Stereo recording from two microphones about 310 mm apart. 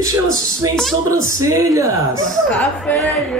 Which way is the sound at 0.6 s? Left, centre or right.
Centre.